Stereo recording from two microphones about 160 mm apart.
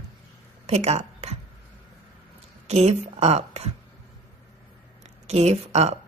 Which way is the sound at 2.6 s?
45° right (ahead or behind).